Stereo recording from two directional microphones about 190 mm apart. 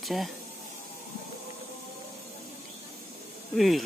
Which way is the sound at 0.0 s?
Centre (ahead or behind).